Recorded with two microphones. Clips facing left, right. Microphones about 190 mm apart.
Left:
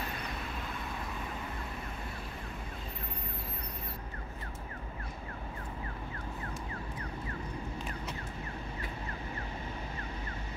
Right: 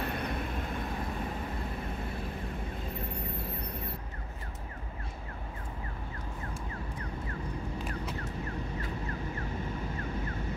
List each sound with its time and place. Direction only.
0.0 s vehicle: 60° right (ahead or behind)